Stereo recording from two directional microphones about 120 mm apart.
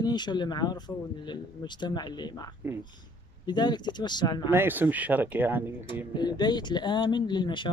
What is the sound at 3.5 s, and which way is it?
Speech, 35° left (ahead or behind).